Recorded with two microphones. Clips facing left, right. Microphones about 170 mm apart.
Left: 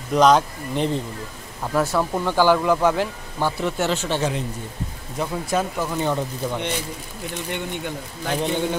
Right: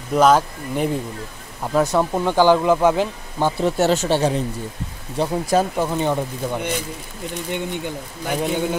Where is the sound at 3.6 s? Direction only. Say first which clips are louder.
Right 5 dB; 40° right (ahead or behind).